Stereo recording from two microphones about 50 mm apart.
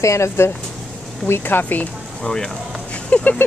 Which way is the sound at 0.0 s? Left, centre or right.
Left.